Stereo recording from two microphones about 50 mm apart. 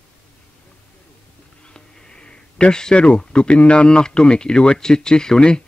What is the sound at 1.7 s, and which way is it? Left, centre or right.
Speech, centre.